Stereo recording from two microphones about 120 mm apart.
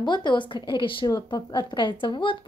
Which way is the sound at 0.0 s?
40° left (ahead or behind).